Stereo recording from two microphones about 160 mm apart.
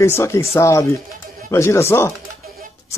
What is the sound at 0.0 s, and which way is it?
Speech, 15° left (ahead or behind).